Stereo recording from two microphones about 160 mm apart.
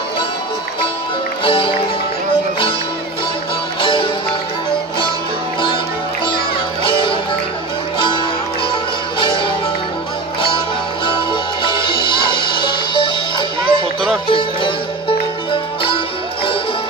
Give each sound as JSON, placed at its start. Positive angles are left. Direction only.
{"t": 1.4, "sound": "music", "side_deg": 35}
{"t": 3.8, "sound": "music", "side_deg": 30}
{"t": 6.8, "sound": "music", "side_deg": 30}
{"t": 9.2, "sound": "music", "side_deg": 30}
{"t": 11.6, "sound": "music", "side_deg": 30}